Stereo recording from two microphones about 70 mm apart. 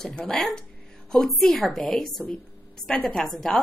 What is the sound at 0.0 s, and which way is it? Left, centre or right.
A woman's voice, centre.